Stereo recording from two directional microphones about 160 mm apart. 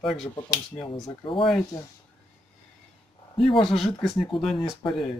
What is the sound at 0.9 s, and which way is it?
Speech, 35° left (ahead or behind).